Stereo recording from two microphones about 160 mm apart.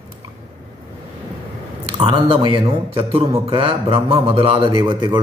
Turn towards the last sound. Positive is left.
turn(degrees=-30)  # may be behind; listen again after turning